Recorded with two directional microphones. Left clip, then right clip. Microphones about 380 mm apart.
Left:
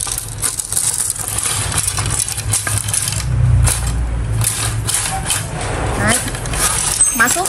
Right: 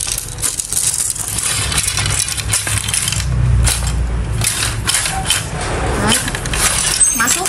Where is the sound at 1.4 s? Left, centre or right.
Centre.